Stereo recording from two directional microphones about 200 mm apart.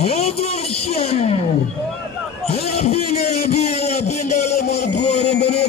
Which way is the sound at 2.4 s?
30° left (ahead or behind).